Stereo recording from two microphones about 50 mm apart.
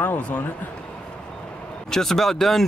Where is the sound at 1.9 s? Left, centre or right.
Centre.